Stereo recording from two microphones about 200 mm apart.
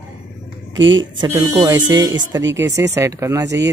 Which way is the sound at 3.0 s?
15° right (ahead or behind).